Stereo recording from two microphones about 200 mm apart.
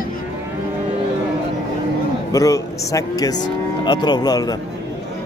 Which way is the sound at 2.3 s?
15° left (ahead or behind).